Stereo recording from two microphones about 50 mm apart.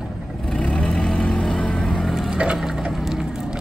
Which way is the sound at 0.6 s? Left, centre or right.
Left.